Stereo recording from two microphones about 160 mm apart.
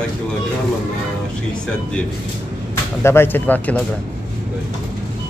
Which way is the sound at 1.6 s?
5° left (ahead or behind).